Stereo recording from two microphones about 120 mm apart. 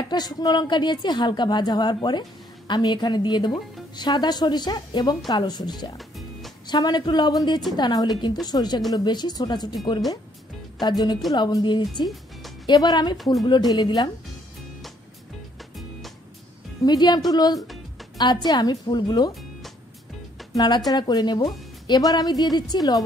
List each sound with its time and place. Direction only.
0.1 s a woman's voice: 35° left (ahead or behind)
5.9 s music: centre (ahead or behind)
6.7 s a woman's voice: 35° left (ahead or behind)
10.8 s a woman's voice: 35° left (ahead or behind)
16.8 s a woman's voice: 35° left (ahead or behind)
20.5 s a woman's voice: 35° left (ahead or behind)